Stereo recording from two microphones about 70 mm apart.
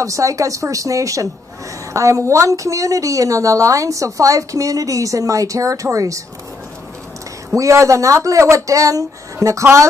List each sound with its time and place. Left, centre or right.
0.0 s a woman's voice: right
7.5 s a woman's voice: right